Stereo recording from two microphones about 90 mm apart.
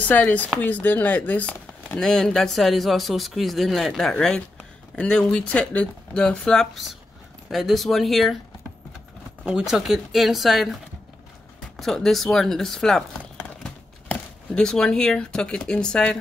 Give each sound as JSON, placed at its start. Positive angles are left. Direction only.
{"t": 0.0, "sound": "speech", "side_deg": 15}
{"t": 9.4, "sound": "speech", "side_deg": -10}
{"t": 11.8, "sound": "speech", "side_deg": 5}